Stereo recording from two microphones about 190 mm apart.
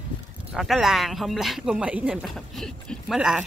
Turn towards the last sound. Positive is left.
turn(degrees=-5)  # may be behind; listen again after turning